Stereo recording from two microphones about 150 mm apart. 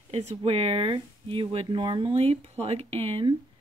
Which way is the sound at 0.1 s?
45° right (ahead or behind).